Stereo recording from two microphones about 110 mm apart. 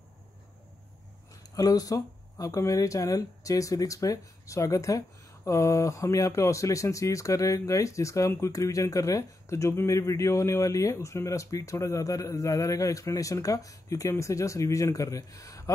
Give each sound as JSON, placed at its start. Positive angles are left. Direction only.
{"t": 1.5, "sound": "speech", "side_deg": 35}